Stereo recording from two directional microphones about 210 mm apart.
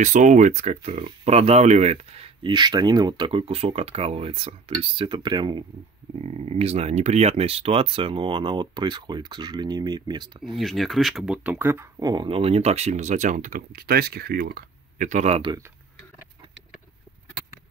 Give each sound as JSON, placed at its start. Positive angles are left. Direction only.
{"t": 0.0, "sound": "speech", "side_deg": -35}
{"t": 10.4, "sound": "speech", "side_deg": 0}